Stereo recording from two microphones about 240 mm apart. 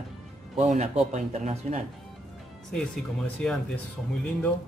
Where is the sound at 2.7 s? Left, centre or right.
Centre.